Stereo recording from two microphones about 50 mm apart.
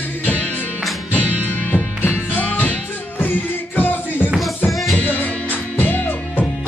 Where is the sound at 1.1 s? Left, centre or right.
Left.